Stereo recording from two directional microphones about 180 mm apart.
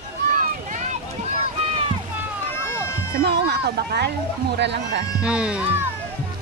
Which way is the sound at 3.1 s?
65° right (ahead or behind).